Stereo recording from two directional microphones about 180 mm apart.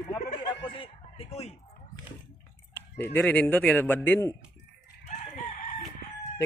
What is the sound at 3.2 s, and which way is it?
A man's voice, 10° left (ahead or behind).